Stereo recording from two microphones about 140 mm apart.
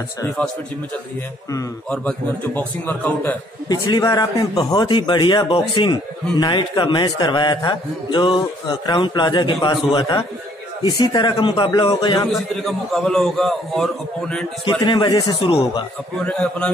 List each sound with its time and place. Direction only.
1.9 s a man's voice: 10° left (ahead or behind)
3.6 s a man's voice: 30° left (ahead or behind)
12.3 s a man's voice: centre (ahead or behind)
14.6 s a man's voice: 30° left (ahead or behind)
16.3 s a man's voice: 10° left (ahead or behind)